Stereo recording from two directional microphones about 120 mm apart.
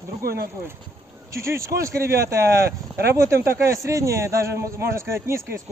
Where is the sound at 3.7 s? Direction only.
25° right (ahead or behind).